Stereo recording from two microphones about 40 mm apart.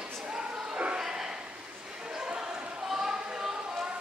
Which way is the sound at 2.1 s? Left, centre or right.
Centre.